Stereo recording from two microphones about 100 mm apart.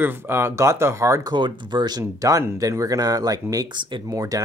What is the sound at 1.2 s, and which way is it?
Speech, 50° right (ahead or behind).